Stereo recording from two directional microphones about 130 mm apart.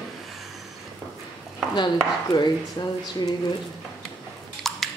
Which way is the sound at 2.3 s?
35° left (ahead or behind).